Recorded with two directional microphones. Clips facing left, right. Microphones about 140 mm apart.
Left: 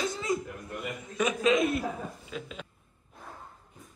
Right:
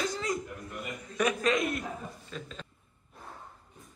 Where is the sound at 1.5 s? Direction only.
25° left (ahead or behind).